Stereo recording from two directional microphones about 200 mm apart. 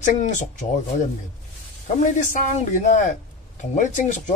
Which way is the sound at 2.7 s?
40° left (ahead or behind).